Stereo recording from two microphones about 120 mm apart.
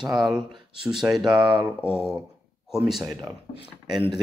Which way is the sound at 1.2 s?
40° right (ahead or behind).